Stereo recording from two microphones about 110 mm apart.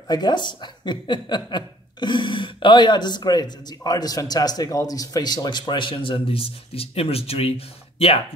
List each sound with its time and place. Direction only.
0.1 s speech: 40° left (ahead or behind); by 8.2 s 60° left (ahead or behind)